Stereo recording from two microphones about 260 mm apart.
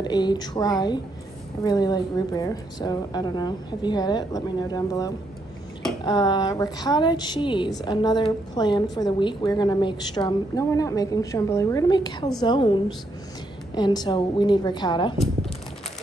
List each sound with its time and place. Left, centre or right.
0.0 s a woman's voice: centre
13.7 s a woman's voice: centre